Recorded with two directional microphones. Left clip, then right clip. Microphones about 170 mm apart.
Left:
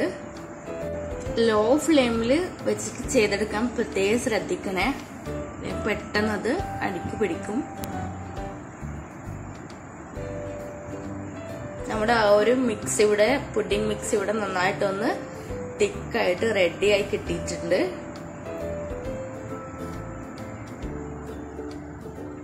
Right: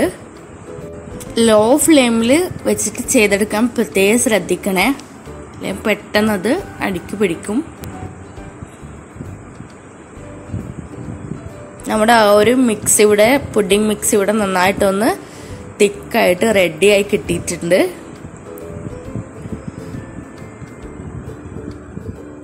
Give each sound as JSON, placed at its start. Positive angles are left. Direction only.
{"t": 1.3, "sound": "a woman's voice", "side_deg": -60}
{"t": 11.9, "sound": "a woman's voice", "side_deg": -60}